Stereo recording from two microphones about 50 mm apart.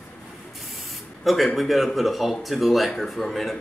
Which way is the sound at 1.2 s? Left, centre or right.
Centre.